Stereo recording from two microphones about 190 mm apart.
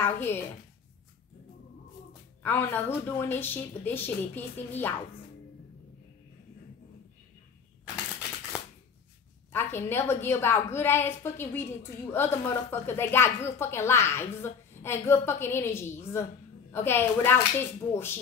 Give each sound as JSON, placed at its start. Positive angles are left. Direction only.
{"t": 0.0, "sound": "a woman's voice", "side_deg": 10}
{"t": 2.4, "sound": "a woman's voice", "side_deg": 10}
{"t": 8.5, "sound": "shuffling cards", "side_deg": -5}
{"t": 9.5, "sound": "a woman's voice", "side_deg": 10}